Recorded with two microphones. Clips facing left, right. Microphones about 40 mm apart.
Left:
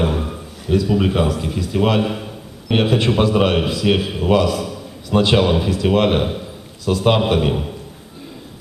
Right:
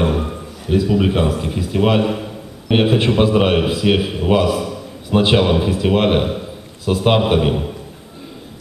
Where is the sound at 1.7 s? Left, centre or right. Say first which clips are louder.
Right 2 dB; centre.